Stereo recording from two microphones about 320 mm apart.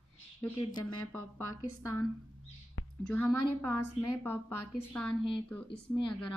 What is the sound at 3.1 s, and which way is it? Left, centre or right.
Speech, centre.